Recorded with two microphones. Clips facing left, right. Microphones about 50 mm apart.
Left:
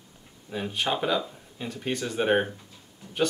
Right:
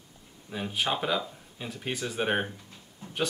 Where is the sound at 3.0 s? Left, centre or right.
Right.